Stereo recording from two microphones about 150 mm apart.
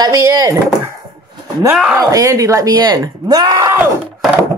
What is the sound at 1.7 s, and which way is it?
Speech, 5° right (ahead or behind).